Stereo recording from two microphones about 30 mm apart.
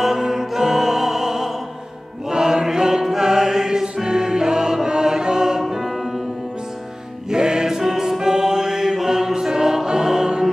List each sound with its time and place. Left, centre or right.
0.0 s music: centre
2.2 s choir: right
4.0 s music: centre
5.6 s music: centre
7.2 s music: right